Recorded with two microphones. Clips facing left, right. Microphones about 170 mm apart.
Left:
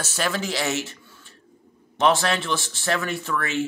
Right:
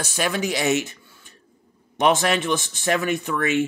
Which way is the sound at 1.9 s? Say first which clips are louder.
Right 1 dB; 15° right (ahead or behind).